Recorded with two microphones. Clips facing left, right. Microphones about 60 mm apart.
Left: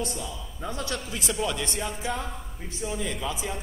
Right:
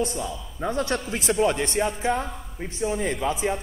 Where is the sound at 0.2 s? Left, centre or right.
Centre.